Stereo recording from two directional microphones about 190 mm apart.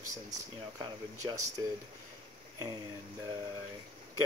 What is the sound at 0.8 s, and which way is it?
Speech, 20° right (ahead or behind).